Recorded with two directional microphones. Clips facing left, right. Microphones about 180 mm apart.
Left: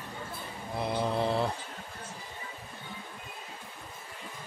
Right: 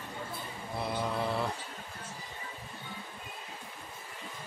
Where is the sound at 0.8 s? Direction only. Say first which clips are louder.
Left 4 dB; 30° left (ahead or behind).